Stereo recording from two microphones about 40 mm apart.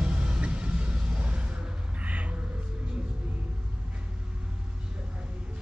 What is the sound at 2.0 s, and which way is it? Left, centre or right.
Music, right.